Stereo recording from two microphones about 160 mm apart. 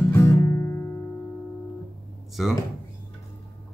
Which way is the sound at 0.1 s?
15° left (ahead or behind).